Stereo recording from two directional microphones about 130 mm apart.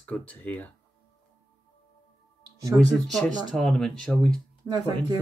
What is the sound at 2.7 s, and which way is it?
Speech, 5° left (ahead or behind).